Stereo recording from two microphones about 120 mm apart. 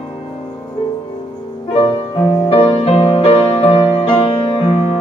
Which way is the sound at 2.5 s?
55° left (ahead or behind).